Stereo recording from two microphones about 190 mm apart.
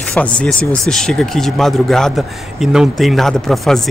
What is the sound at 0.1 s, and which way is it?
Speech, 5° left (ahead or behind).